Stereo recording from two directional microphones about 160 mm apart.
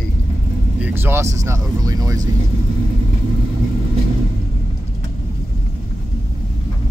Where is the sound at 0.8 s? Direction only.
15° right (ahead or behind).